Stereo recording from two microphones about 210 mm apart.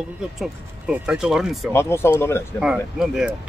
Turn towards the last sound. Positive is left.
turn(degrees=-5)  # may be behind; listen again after turning